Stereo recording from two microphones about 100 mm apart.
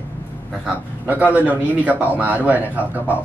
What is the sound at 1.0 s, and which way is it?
A man's voice, 15° right (ahead or behind).